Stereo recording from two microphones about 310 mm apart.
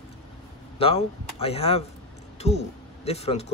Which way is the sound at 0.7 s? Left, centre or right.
Centre.